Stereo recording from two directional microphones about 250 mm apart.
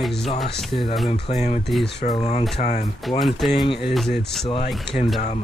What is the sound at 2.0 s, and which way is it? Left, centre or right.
Speech, left.